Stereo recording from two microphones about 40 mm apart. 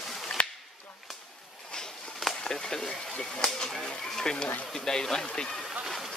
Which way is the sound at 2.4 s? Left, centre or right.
Centre.